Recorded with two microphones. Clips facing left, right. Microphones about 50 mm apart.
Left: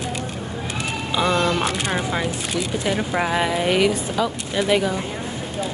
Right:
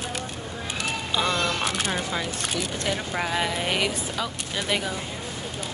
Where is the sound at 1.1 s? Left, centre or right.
Centre.